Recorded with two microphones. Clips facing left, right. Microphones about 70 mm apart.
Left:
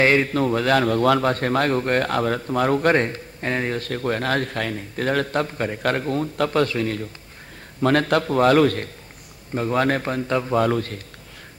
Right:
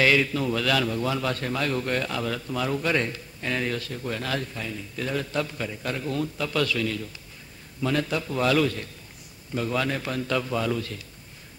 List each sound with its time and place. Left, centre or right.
0.0 s a man's voice: left
0.8 s a man's voice: left
1.2 s speech: left
3.8 s speech: left
4.5 s a man's voice: left
5.8 s a man's voice: left
6.0 s a man's voice: left
7.8 s speech: left
9.5 s a man's voice: left
10.6 s speech: left